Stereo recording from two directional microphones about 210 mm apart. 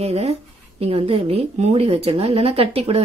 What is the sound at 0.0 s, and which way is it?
Speech, 30° right (ahead or behind).